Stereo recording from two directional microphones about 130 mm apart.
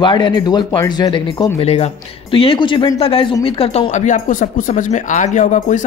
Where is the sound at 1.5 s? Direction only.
50° left (ahead or behind).